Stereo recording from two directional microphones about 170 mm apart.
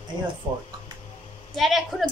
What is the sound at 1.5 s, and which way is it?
Speech, centre (ahead or behind).